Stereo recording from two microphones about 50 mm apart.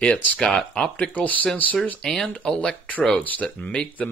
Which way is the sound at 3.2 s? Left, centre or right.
Left.